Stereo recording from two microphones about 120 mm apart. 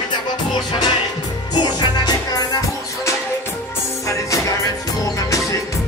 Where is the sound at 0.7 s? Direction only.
35° left (ahead or behind).